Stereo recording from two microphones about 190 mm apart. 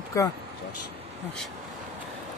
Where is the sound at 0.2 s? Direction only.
15° left (ahead or behind).